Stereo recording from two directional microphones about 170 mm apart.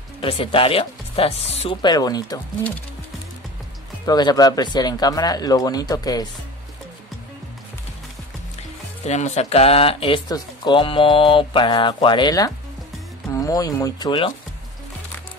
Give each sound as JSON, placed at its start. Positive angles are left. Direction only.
{"t": 0.2, "sound": "speech", "side_deg": 30}
{"t": 1.8, "sound": "speech", "side_deg": 25}
{"t": 4.0, "sound": "speech", "side_deg": 25}
{"t": 9.0, "sound": "speech", "side_deg": 40}